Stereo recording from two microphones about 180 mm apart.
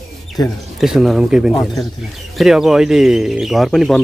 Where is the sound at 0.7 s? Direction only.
Centre (ahead or behind).